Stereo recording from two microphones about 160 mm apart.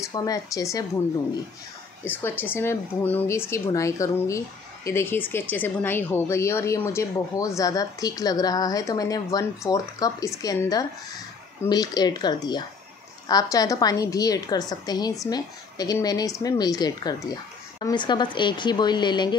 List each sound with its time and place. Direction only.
0.0 s a woman's voice: 25° left (ahead or behind)
2.0 s a woman's voice: 15° left (ahead or behind); by 19.3 s 30° left (ahead or behind)